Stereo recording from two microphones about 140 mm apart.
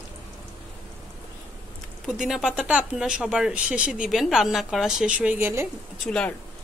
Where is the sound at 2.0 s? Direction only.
Centre (ahead or behind).